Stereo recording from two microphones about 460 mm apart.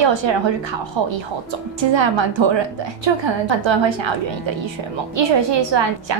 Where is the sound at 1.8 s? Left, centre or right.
Right.